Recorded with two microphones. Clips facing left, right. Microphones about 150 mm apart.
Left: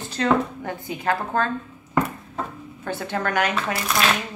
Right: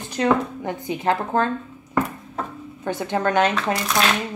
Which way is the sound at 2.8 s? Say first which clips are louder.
Right 4 dB; 20° right (ahead or behind).